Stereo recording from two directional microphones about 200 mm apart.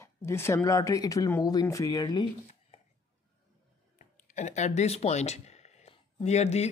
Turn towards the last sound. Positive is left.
turn(degrees=35)  # may be behind; listen again after turning